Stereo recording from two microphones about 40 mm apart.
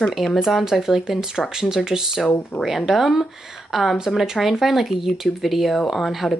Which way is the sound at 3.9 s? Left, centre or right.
Centre.